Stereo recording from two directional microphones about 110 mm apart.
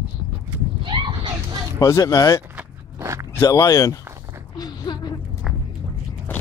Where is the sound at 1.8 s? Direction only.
30° left (ahead or behind).